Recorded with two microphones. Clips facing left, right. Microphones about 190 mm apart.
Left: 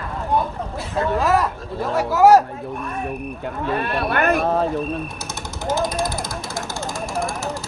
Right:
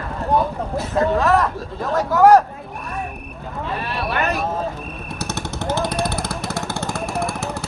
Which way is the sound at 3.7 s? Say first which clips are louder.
Left 2 dB; 55° left (ahead or behind).